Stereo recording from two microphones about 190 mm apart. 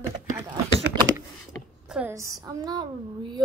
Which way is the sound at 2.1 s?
15° right (ahead or behind).